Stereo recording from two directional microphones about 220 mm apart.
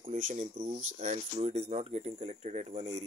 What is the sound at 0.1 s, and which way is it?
Speech, 35° right (ahead or behind).